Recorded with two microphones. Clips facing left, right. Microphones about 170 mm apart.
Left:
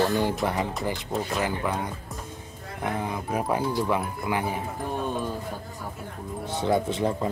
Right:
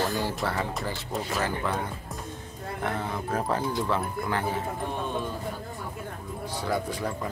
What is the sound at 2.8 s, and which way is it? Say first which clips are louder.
Speech: left 2 dB; 15° left (ahead or behind).